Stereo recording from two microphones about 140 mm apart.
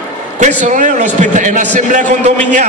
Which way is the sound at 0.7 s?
65° right (ahead or behind).